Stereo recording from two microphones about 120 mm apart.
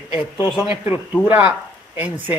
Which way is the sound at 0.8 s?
15° right (ahead or behind).